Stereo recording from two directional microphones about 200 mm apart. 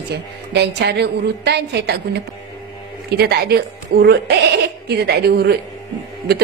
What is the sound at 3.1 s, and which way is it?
Speech, 55° right (ahead or behind).